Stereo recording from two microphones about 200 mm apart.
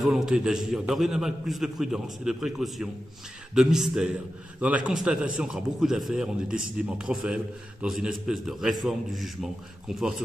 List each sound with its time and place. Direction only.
0.0 s a man's voice: centre (ahead or behind)